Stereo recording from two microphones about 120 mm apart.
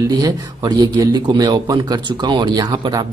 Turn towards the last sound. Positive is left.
turn(degrees=-35)  # may be behind; listen again after turning